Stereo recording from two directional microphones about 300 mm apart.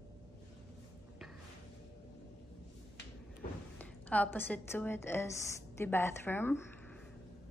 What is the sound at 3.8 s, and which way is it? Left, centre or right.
A woman's voice, centre.